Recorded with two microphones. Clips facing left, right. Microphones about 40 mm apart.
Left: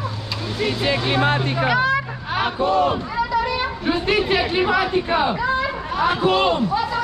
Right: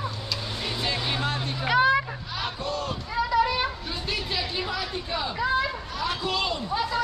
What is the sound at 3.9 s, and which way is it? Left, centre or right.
Chatter, left.